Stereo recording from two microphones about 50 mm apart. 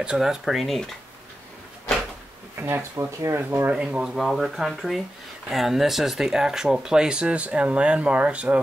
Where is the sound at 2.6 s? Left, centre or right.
Right.